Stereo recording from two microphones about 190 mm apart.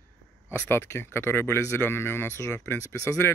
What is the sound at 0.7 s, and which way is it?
Speech, 10° left (ahead or behind).